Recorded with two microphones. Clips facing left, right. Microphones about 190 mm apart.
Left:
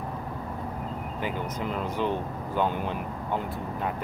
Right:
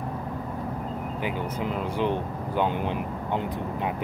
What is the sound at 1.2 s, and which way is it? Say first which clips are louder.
Speech: right 1 dB; 10° right (ahead or behind).